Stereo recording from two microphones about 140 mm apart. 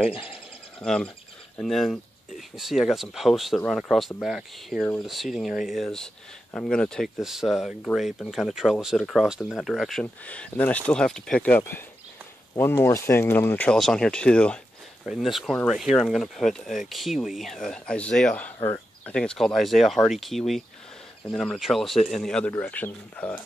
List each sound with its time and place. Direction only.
0.7 s speech: 5° left (ahead or behind)
13.7 s speech: 5° left (ahead or behind)
19.1 s speech: 5° left (ahead or behind)